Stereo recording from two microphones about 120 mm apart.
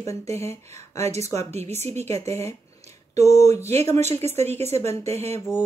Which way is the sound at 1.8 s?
65° right (ahead or behind).